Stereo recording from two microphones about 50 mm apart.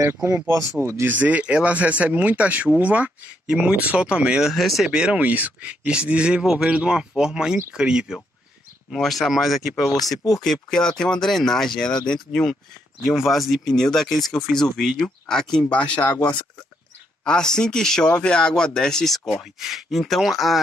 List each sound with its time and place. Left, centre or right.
0.0 s speech: right
0.7 s speech: right
1.0 s speech: right
4.4 s speech: centre
4.8 s speech: centre
5.2 s speech: right; by 8.2 s centre
8.9 s speech: centre
10.4 s speech: centre
13.0 s speech: centre
15.7 s speech: left
17.2 s speech: centre
18.0 s speech: centre
19.3 s speech: centre